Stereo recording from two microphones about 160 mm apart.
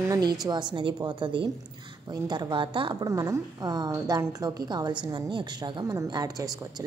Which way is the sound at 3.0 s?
20° right (ahead or behind).